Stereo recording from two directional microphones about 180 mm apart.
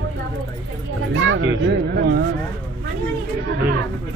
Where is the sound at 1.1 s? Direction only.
90° right; by 2.2 s 70° right (ahead or behind).